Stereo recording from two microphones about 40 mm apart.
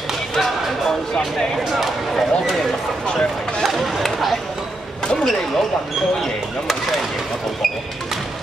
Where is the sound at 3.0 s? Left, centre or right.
Left.